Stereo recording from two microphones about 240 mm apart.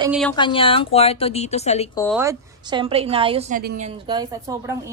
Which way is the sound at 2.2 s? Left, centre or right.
Centre.